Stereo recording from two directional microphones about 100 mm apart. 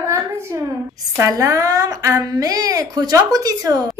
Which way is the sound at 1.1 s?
35° right (ahead or behind).